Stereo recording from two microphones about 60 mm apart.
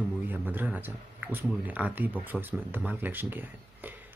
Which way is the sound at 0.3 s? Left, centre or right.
Right.